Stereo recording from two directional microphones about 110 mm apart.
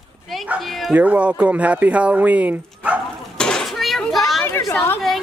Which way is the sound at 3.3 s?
5° left (ahead or behind).